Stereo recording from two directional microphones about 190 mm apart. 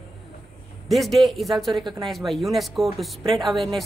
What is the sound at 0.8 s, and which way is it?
Speech, centre (ahead or behind).